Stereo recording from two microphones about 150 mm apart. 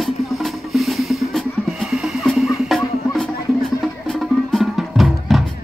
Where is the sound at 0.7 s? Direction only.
Centre (ahead or behind).